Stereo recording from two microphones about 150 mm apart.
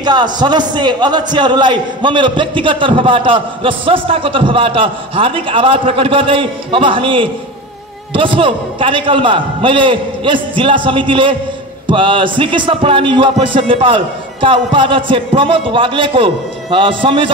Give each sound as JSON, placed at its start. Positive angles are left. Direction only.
{"t": 0.0, "sound": "a man's voice", "side_deg": -30}